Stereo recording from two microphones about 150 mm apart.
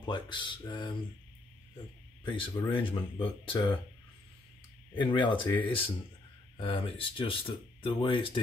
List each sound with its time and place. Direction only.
0.0 s speech: 30° left (ahead or behind)
2.2 s speech: 35° left (ahead or behind)
4.9 s speech: 35° left (ahead or behind)